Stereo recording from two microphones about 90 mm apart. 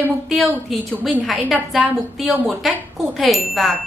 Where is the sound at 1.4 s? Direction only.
20° right (ahead or behind).